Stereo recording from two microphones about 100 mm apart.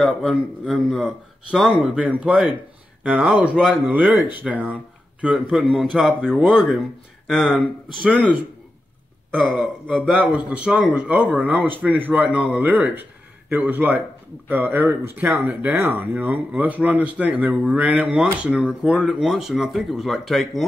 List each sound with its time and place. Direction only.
0.0 s speech: centre (ahead or behind)
9.8 s speech: 10° right (ahead or behind)